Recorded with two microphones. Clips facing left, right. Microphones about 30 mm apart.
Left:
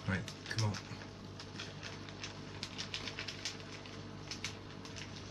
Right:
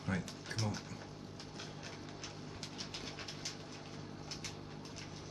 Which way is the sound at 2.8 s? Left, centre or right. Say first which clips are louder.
Left 4 dB; left.